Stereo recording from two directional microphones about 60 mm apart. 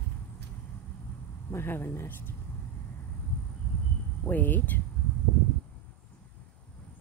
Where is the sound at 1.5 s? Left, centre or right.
Left.